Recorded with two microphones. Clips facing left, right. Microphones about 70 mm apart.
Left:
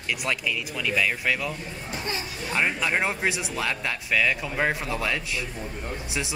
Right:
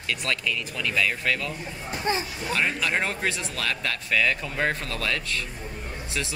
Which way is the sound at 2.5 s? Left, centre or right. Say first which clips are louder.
Left 1 dB; centre.